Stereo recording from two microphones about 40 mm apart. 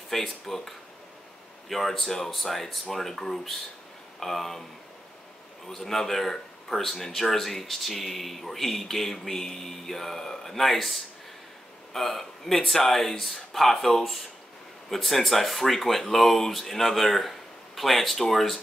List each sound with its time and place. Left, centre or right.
0.1 s speech: centre
5.7 s speech: centre